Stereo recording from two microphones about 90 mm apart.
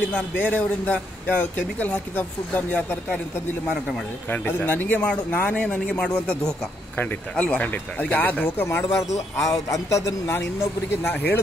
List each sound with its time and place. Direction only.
0.1 s speech: 15° left (ahead or behind)
4.3 s speech: 20° left (ahead or behind)
7.0 s speech: 20° left (ahead or behind)
8.6 s speech: 30° left (ahead or behind)